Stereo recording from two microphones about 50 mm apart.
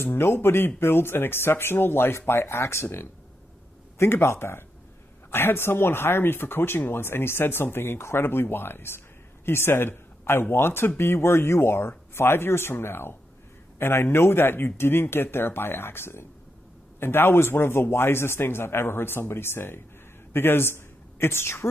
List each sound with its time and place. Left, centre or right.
0.0 s a woman's voice: left